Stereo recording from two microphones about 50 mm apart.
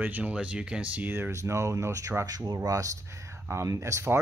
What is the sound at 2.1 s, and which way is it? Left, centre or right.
Speech, right.